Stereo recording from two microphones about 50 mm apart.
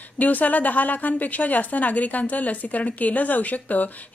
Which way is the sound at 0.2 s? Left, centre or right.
Left.